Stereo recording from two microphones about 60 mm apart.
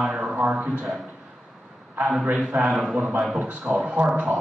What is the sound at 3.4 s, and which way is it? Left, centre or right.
Speech, right.